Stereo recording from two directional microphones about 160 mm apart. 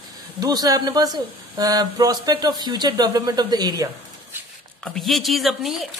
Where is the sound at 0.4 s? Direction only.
25° right (ahead or behind).